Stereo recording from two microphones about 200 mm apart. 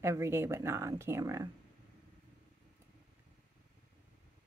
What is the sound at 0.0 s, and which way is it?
Speech, 15° right (ahead or behind).